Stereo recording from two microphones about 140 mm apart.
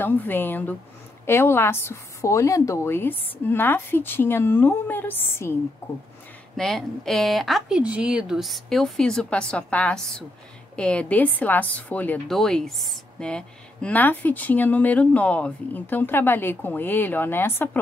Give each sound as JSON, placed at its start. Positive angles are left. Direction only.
{"t": 0.0, "sound": "a woman's voice", "side_deg": 15}
{"t": 6.5, "sound": "a woman's voice", "side_deg": 0}